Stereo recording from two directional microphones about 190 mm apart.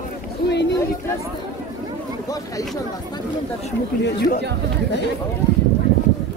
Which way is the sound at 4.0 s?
55° left (ahead or behind).